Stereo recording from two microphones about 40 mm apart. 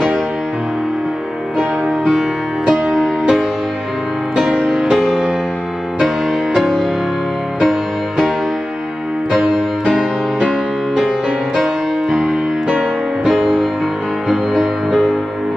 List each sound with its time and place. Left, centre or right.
2.9 s music: centre
4.6 s music: centre
6.5 s music: centre
9.4 s music: centre
9.8 s music: centre
11.6 s music: centre
13.2 s music: centre